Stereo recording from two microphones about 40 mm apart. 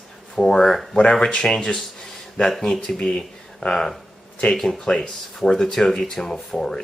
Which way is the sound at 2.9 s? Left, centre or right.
Centre.